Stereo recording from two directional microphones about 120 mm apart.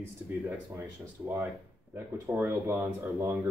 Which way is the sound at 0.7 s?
20° right (ahead or behind).